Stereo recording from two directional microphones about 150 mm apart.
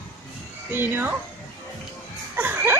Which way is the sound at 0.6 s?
15° right (ahead or behind).